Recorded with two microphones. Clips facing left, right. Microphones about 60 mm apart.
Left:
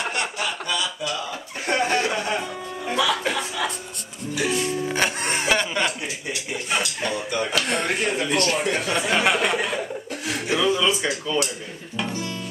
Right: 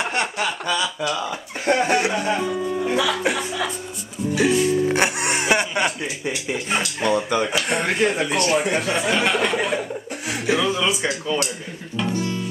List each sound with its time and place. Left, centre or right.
0.0 s chuckle: right
1.7 s speech: centre
4.5 s speech: centre
9.1 s speech: centre
10.2 s speech: centre
12.1 s guitar: right